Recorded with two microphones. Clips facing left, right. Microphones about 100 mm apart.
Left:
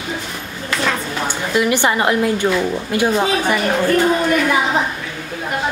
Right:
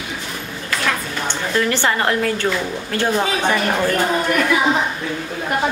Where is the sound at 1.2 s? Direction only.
15° left (ahead or behind).